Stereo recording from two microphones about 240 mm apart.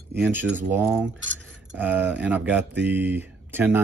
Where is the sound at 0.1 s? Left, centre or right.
Centre.